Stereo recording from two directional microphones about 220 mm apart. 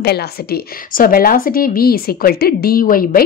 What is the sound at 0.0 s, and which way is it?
A woman's voice, 45° left (ahead or behind).